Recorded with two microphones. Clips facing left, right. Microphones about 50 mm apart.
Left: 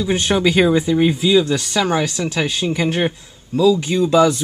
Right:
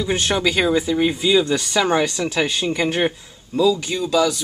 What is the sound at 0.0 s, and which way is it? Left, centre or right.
Speech, centre.